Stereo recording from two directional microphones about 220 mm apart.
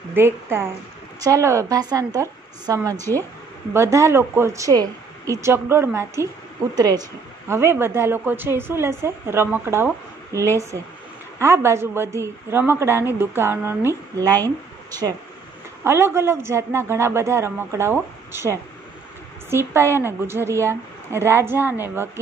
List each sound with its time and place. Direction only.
0.1 s a woman's voice: 10° right (ahead or behind)
15.8 s speech: 10° right (ahead or behind)